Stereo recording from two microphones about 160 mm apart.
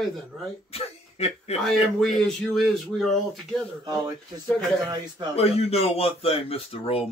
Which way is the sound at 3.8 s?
25° right (ahead or behind).